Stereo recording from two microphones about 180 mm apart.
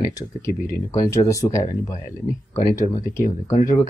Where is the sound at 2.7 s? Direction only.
45° left (ahead or behind).